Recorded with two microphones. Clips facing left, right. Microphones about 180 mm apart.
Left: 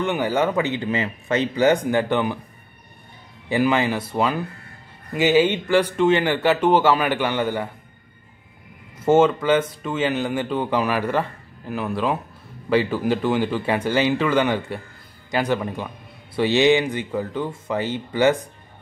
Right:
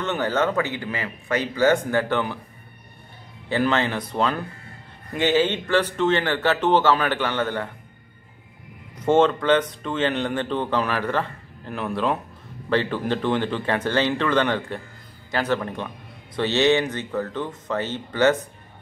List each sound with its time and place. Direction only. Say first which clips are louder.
0.0 s speech: left 2 dB; 10° left (ahead or behind)
3.4 s speech: left 2 dB; 10° left (ahead or behind)
9.0 s speech: left 2 dB; 5° left (ahead or behind)